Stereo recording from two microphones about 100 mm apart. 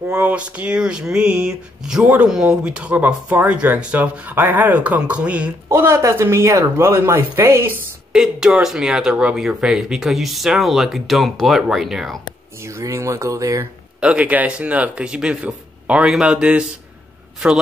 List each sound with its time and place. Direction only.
0.0 s speech: 15° right (ahead or behind)
5.7 s speech: 25° right (ahead or behind)
8.1 s speech: 5° right (ahead or behind)
12.6 s speech: 30° right (ahead or behind)
14.0 s speech: 15° right (ahead or behind)